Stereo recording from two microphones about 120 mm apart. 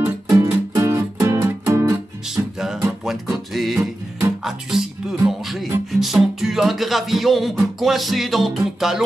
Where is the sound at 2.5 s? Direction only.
5° right (ahead or behind).